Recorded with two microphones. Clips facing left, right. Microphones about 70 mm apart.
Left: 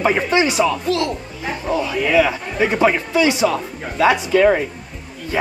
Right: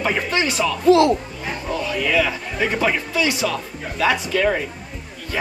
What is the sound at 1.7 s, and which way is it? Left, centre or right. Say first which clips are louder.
Speech: left 4 dB; centre.